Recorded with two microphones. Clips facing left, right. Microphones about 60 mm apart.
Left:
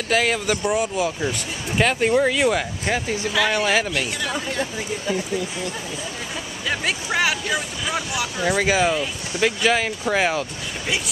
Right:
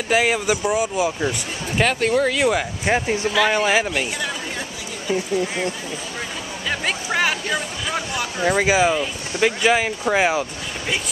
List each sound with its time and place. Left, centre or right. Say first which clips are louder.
0.1 s speech: right 2 dB; centre
2.0 s speech: even; centre
2.8 s speech: right 3 dB; right
3.3 s speech: right 1 dB; centre
6.7 s speech: even; centre
8.5 s speech: right 2 dB; centre